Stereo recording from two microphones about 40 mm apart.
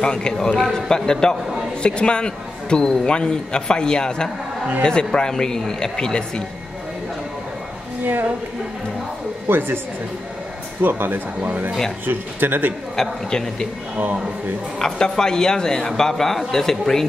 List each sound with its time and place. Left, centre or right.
0.0 s a man's voice: left
8.0 s speech: right
9.5 s speech: right
10.8 s speech: right
12.9 s speech: centre
14.8 s speech: centre